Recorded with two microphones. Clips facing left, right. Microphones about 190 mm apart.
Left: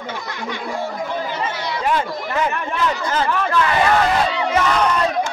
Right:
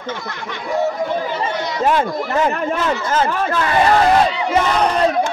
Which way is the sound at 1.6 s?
45° right (ahead or behind).